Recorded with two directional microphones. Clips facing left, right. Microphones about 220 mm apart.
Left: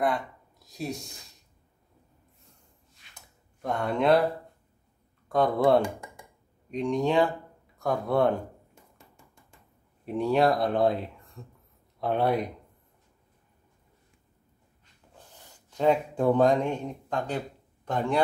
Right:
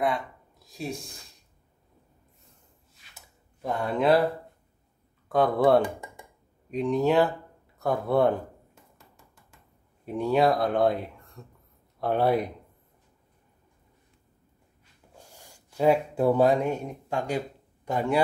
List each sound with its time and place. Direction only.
0.0 s speech: centre (ahead or behind)
3.2 s a sound: 5° right (ahead or behind)
5.3 s speech: centre (ahead or behind)
10.0 s speech: centre (ahead or behind)
15.1 s speech: 10° right (ahead or behind)